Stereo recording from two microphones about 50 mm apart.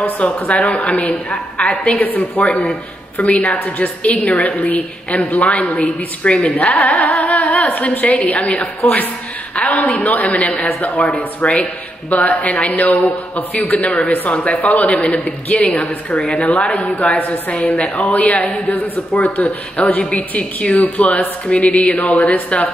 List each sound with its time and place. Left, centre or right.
0.0 s a woman's voice: left
1.3 s a woman's voice: centre
1.9 s a woman's voice: left
2.4 s speech: centre
3.2 s a woman's voice: left